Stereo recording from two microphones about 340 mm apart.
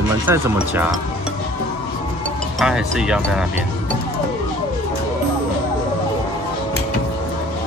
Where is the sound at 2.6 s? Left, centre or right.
Centre.